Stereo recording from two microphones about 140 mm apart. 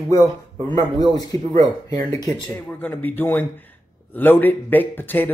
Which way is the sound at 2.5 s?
10° left (ahead or behind).